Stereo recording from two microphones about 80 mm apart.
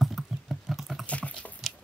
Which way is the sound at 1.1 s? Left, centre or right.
Centre.